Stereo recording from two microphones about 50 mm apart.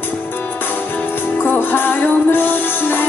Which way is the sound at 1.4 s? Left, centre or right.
Left.